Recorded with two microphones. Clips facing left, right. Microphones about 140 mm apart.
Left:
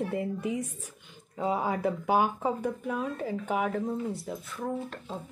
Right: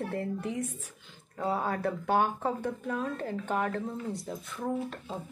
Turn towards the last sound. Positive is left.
turn(degrees=0)  # may be behind; listen again after turning